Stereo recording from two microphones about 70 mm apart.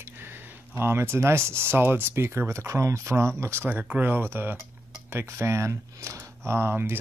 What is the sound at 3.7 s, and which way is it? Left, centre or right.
Speech, right.